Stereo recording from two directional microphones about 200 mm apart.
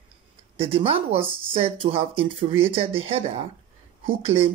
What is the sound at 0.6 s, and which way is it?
Speech, 30° right (ahead or behind).